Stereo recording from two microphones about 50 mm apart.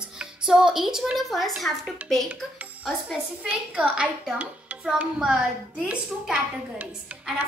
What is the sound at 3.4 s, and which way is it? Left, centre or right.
Speech, right.